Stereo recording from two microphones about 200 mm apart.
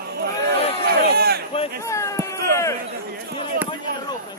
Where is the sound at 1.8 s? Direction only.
15° left (ahead or behind).